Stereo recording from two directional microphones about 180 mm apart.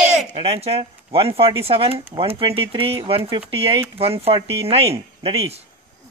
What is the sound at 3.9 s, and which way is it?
Speech, 30° right (ahead or behind).